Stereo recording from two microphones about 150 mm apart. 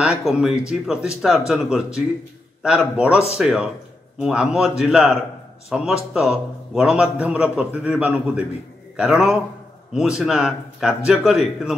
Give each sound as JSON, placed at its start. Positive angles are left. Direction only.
{"t": 0.0, "sound": "a man's voice", "side_deg": -5}